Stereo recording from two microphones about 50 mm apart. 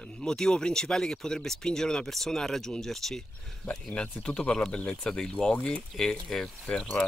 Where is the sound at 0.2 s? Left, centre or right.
Centre.